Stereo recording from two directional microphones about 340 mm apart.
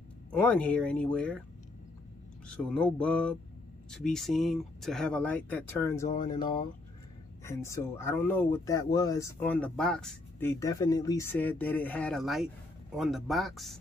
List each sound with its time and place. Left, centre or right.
0.3 s speech: centre
2.4 s speech: centre